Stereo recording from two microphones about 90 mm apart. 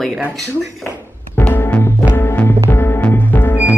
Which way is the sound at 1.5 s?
20° left (ahead or behind).